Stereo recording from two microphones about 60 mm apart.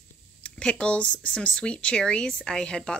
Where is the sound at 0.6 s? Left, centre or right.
Centre.